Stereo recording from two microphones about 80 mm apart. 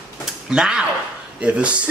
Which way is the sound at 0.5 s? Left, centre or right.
Centre.